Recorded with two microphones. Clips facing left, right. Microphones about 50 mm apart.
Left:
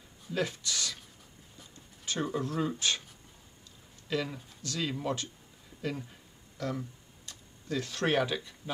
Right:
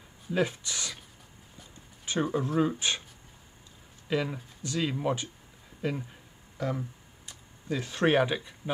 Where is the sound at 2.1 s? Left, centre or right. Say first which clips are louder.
Right 4 dB; centre.